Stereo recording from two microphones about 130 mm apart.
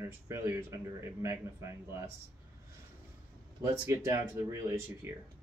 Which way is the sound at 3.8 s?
20° right (ahead or behind).